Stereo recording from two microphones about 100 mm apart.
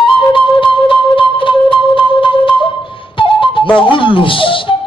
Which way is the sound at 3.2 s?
60° left (ahead or behind).